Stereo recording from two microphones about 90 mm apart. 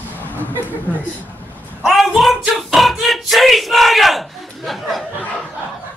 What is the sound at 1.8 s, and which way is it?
Speech, centre (ahead or behind).